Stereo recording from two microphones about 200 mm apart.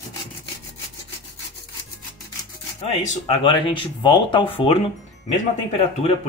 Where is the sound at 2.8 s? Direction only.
30° left (ahead or behind).